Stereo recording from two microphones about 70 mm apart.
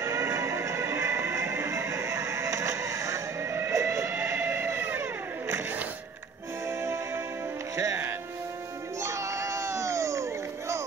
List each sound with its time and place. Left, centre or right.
0.0 s music: right
6.7 s music: right
9.0 s crowd: right